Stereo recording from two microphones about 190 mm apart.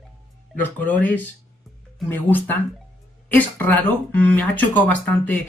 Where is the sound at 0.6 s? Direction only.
10° left (ahead or behind).